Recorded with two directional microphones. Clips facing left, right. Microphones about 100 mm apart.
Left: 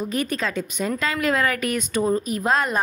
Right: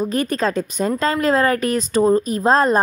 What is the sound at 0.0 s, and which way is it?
Speech, 40° right (ahead or behind).